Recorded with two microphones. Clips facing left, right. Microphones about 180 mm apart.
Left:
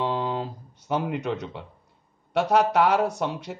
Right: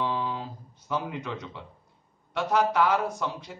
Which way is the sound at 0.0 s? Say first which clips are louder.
Left 4 dB; 60° left (ahead or behind).